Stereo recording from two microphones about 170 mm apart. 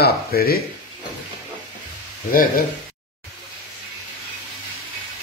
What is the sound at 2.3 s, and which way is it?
Speech, 55° left (ahead or behind).